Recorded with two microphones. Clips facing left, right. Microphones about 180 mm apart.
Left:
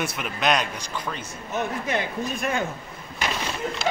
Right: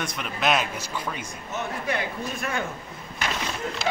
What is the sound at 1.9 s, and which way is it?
Speech, 20° left (ahead or behind).